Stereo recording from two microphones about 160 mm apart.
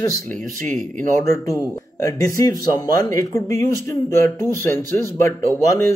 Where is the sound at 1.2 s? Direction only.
20° left (ahead or behind).